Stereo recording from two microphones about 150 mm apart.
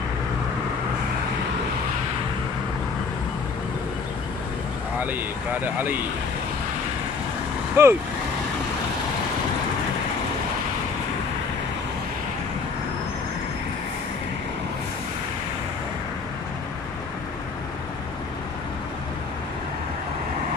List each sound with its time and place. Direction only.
5.0 s speech: 10° right (ahead or behind)
7.8 s speech: 15° right (ahead or behind)